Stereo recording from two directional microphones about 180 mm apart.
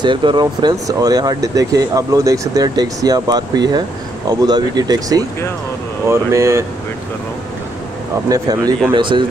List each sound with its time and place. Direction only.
0.0 s speech: 25° right (ahead or behind)
8.3 s speech: 20° right (ahead or behind)